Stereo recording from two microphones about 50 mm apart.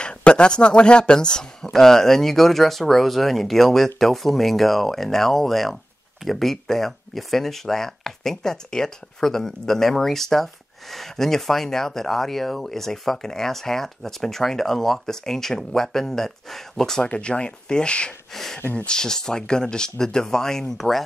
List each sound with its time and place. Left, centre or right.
0.0 s speech: left
17.0 s speech: left
18.3 s speech: centre
18.6 s speech: left
18.9 s speech: centre